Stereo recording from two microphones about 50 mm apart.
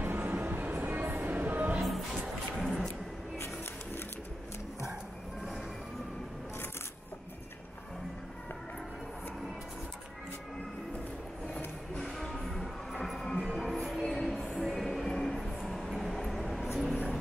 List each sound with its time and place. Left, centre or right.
0.0 s music: right
2.5 s a sound: centre
12.0 s music: centre
14.7 s train: centre
16.6 s vehicle: centre